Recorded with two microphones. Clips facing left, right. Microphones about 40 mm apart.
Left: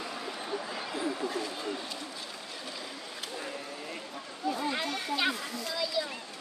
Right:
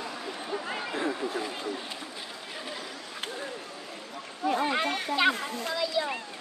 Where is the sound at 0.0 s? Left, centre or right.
Centre.